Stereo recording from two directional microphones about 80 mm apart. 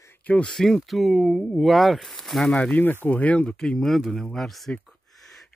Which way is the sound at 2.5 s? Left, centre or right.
Centre.